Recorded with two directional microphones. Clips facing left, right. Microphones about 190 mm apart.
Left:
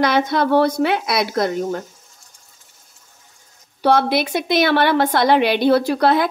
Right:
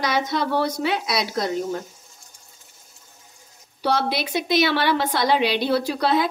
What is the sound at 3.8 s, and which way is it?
A woman's voice, 55° left (ahead or behind).